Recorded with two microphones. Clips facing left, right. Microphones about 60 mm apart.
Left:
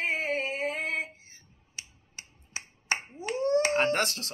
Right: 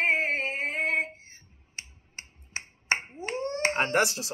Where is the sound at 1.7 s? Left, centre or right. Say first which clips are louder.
Right 3 dB; right.